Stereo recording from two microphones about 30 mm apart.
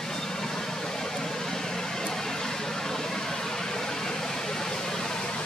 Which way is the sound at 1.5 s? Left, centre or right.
Centre.